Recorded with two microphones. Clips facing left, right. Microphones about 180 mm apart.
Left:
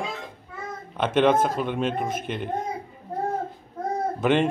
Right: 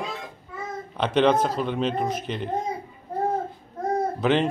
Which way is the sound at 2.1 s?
50° left (ahead or behind).